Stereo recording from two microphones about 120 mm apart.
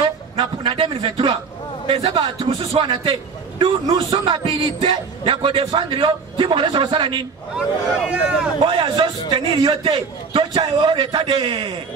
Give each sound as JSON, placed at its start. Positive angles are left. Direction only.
{"t": 0.4, "sound": "a man's voice", "side_deg": -45}
{"t": 7.5, "sound": "speech", "side_deg": -5}
{"t": 8.6, "sound": "a man's voice", "side_deg": -45}